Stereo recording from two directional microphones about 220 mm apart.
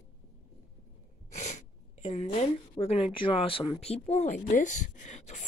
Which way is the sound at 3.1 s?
25° left (ahead or behind).